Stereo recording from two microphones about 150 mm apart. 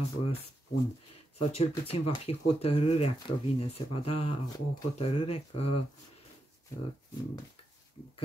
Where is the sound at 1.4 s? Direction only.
40° left (ahead or behind).